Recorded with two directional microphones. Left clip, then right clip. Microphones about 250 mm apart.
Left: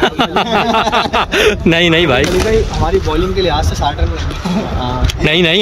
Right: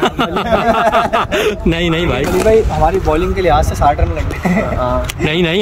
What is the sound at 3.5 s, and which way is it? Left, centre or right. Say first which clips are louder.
Speech: right 4 dB; centre.